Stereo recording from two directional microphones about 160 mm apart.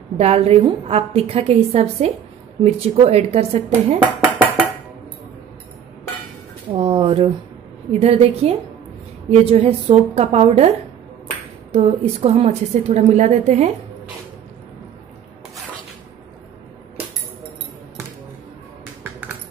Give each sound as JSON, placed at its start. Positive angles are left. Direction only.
{"t": 0.2, "sound": "a woman's voice", "side_deg": -40}
{"t": 6.7, "sound": "a sound", "side_deg": -35}
{"t": 7.9, "sound": "a woman's voice", "side_deg": -40}
{"t": 11.7, "sound": "a woman's voice", "side_deg": -40}